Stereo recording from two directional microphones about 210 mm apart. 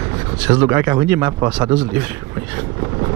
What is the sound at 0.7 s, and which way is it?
Speech, 15° right (ahead or behind).